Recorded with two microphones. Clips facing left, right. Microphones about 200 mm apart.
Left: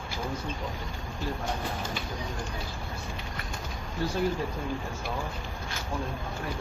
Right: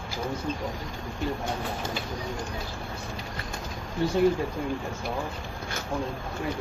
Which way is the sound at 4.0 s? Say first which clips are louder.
Right 4 dB; 25° right (ahead or behind).